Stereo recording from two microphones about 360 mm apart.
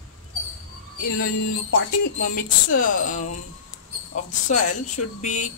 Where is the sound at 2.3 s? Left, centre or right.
Left.